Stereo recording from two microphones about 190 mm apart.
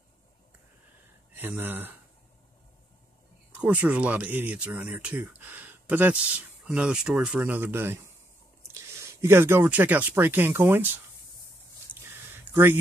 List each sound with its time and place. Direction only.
1.3 s speech: 10° right (ahead or behind)
3.5 s speech: 10° right (ahead or behind)
11.9 s a sound: 25° left (ahead or behind)